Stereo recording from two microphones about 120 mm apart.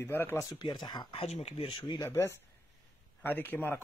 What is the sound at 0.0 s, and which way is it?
Speech, 20° left (ahead or behind).